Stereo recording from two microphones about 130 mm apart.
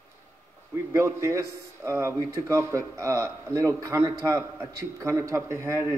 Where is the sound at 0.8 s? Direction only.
20° right (ahead or behind).